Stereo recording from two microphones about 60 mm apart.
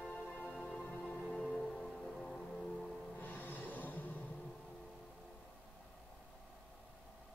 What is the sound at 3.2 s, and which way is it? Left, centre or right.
Snort, left.